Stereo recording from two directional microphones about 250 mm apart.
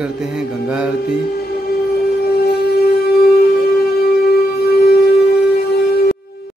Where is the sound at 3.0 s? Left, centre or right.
Left.